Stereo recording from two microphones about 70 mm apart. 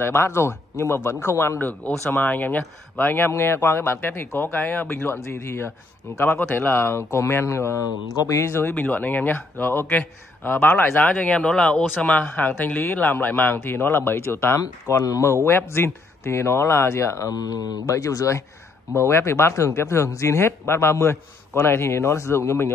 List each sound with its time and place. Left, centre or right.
0.0 s speech: left
1.9 s speech: left
8.7 s speech: left
11.0 s speech: left
14.9 s speech: left
15.4 s speech: left
17.3 s speech: left